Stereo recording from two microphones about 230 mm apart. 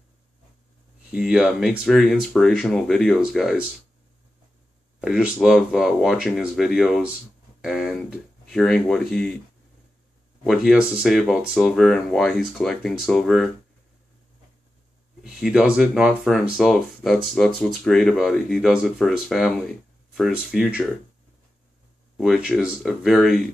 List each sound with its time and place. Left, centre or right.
1.1 s speech: centre
5.0 s speech: centre
10.4 s speech: centre
15.2 s speech: centre
22.1 s speech: centre